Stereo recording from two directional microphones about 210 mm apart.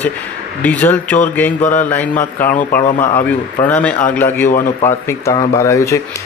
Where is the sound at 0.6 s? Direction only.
10° left (ahead or behind).